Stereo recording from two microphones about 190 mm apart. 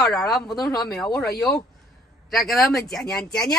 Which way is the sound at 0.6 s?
20° left (ahead or behind).